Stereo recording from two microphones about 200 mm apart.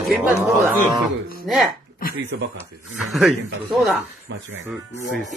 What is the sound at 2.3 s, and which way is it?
Speech, 65° right (ahead or behind).